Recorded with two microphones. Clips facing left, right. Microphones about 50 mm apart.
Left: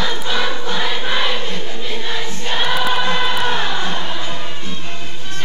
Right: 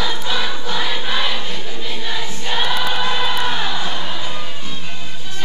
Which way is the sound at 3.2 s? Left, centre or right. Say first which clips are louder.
Left 1 dB; centre.